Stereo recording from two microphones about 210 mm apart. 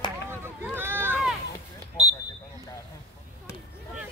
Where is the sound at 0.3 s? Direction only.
10° right (ahead or behind).